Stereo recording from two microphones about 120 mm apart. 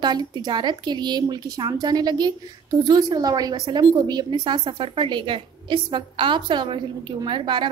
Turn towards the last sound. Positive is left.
turn(degrees=-40)  # may be behind; listen again after turning